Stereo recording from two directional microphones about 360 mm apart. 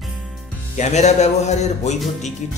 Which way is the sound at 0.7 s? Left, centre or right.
Centre.